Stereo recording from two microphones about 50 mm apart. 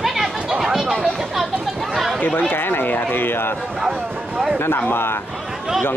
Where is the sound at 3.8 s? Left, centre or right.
Centre.